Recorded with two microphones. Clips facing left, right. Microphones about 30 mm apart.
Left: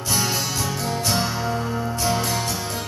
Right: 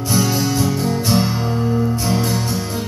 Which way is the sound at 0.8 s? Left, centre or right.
Centre.